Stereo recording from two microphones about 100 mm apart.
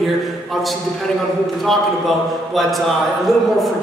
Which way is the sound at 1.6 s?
Centre (ahead or behind).